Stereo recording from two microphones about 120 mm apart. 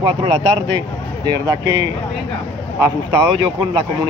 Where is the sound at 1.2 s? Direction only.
35° right (ahead or behind).